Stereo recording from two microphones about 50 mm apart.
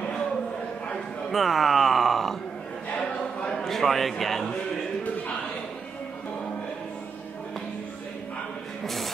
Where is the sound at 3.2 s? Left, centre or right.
Left.